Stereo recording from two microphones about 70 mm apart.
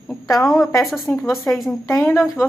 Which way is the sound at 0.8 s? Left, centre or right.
Centre.